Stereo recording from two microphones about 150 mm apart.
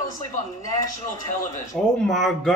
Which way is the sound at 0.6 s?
25° left (ahead or behind).